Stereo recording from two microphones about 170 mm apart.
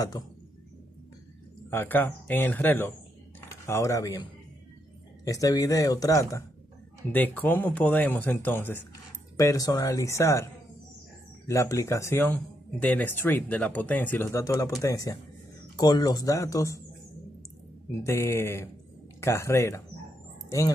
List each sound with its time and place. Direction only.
0.2 s speech: 25° left (ahead or behind)
1.7 s speech: 10° left (ahead or behind)
18.0 s speech: 15° left (ahead or behind)